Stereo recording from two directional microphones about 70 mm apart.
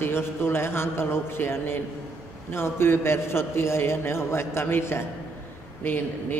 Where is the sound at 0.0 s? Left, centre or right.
Left.